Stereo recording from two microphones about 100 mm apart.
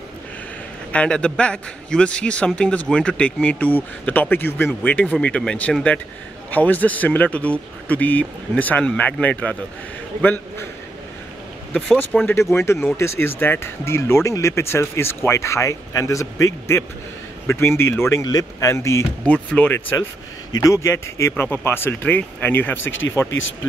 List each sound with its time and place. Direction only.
0.9 s a man's voice: 10° left (ahead or behind)
12.3 s speech: 25° left (ahead or behind)
19.2 s a man's voice: 15° left (ahead or behind)
20.5 s speech: 30° left (ahead or behind)